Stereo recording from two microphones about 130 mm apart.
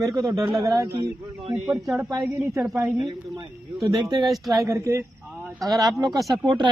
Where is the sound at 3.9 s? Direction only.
30° right (ahead or behind).